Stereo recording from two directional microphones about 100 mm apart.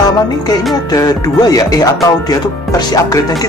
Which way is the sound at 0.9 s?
40° left (ahead or behind).